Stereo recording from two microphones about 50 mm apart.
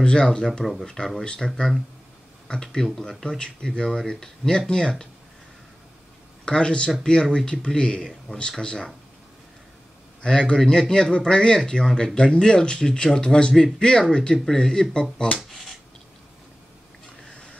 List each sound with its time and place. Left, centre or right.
0.0 s speech: centre
6.4 s speech: centre
10.2 s speech: centre